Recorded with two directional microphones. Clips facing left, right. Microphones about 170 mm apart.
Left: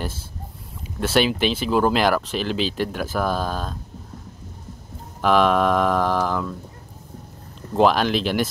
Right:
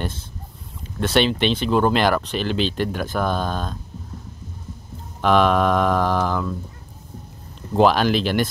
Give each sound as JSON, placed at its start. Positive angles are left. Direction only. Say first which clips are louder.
{"t": 0.9, "sound": "speech", "louder": "right 1 dB", "side_deg": 5}
{"t": 5.2, "sound": "speech", "louder": "right 1 dB", "side_deg": 0}
{"t": 7.7, "sound": "speech", "louder": "right 1 dB", "side_deg": 0}